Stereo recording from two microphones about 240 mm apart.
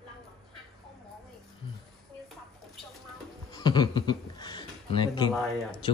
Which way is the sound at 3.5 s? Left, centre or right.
Centre.